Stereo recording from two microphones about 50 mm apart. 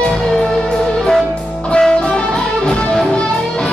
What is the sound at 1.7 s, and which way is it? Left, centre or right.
Music, centre.